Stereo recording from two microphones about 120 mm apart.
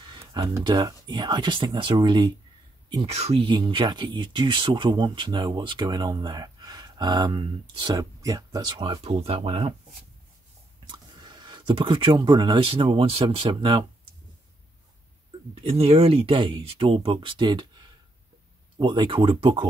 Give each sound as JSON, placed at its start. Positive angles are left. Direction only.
{"t": 0.2, "sound": "speech", "side_deg": -25}
{"t": 3.1, "sound": "speech", "side_deg": -60}
{"t": 3.4, "sound": "speech", "side_deg": -40}
{"t": 9.0, "sound": "speech", "side_deg": -55}
{"t": 10.9, "sound": "speech", "side_deg": -40}
{"t": 15.6, "sound": "speech", "side_deg": -55}